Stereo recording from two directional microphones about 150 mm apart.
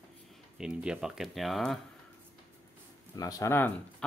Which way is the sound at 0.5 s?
5° right (ahead or behind).